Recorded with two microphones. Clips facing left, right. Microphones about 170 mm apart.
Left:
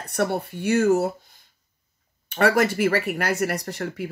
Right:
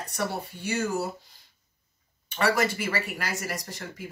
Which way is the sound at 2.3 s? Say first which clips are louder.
Left 5 dB; 55° left (ahead or behind).